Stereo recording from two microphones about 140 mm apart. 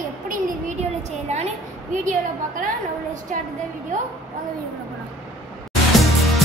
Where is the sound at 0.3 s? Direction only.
75° right (ahead or behind).